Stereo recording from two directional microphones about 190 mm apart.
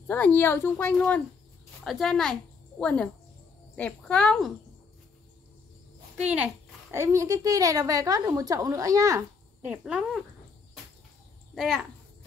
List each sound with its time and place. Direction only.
0.1 s a woman's voice: 10° left (ahead or behind)
6.1 s a child's voice: 10° right (ahead or behind)
9.7 s a woman's voice: 5° right (ahead or behind)
11.5 s a child's voice: centre (ahead or behind)